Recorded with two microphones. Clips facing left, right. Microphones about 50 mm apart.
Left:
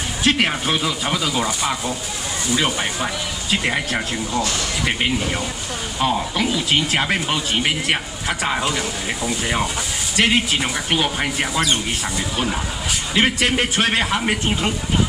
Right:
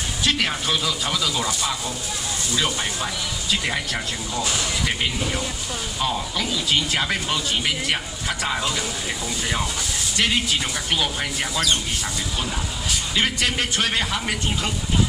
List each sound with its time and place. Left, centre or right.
0.2 s speech: left
5.9 s speech: left
13.1 s speech: left